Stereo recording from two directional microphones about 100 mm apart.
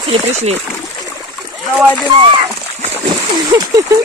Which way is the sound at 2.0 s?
55° right (ahead or behind).